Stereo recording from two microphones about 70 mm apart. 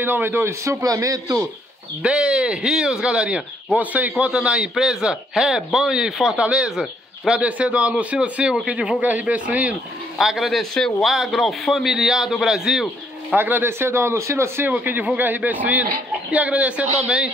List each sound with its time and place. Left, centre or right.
0.0 s speech: right
0.8 s a man's voice: right
2.0 s a man's voice: centre
7.4 s a man's voice: centre
10.1 s a man's voice: centre
13.4 s speech: right
14.7 s a man's voice: right